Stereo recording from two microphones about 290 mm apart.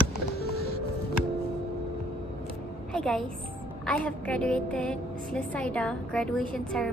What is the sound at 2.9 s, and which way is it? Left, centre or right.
Music, centre.